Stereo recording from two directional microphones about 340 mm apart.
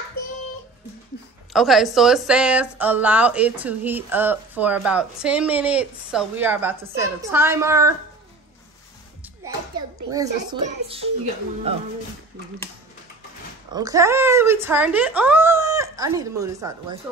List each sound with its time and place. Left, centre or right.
1.5 s speech: centre
10.1 s speech: centre
11.7 s speech: centre
13.7 s speech: centre